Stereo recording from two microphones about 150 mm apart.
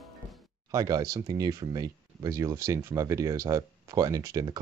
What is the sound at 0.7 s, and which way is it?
Speech, 25° right (ahead or behind).